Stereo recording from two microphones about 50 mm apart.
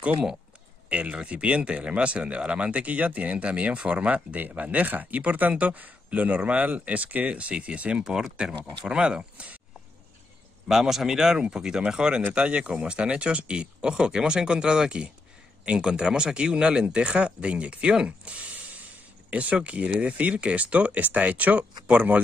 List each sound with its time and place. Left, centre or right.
0.8 s speech: right
8.0 s speech: centre
10.7 s speech: centre; by 22.2 s right